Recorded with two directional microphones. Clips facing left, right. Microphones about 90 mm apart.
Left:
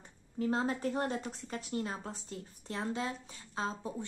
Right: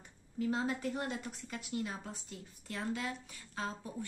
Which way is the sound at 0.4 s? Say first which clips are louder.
Left 2 dB; 35° left (ahead or behind).